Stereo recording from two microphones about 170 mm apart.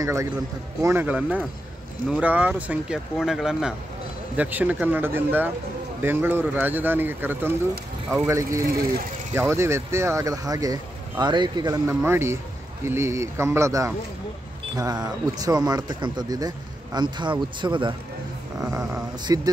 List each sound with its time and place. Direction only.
0.0 s speech: 15° right (ahead or behind)
18.6 s speech: 5° right (ahead or behind)
19.2 s speech: 20° right (ahead or behind)